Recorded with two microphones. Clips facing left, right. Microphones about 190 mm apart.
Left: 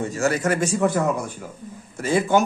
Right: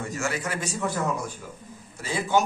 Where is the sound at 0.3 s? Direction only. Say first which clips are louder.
Left 9 dB; 45° left (ahead or behind).